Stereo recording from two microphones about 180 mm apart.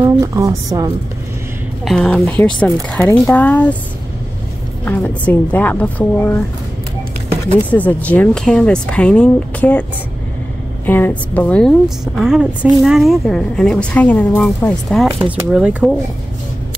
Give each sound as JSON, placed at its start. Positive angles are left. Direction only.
{"t": 0.0, "sound": "speech", "side_deg": -20}
{"t": 1.9, "sound": "speech", "side_deg": 0}
{"t": 4.8, "sound": "speech", "side_deg": 10}
{"t": 7.7, "sound": "speech", "side_deg": 10}
{"t": 10.9, "sound": "speech", "side_deg": 10}